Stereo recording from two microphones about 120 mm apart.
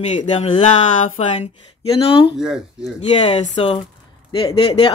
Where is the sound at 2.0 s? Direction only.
50° left (ahead or behind).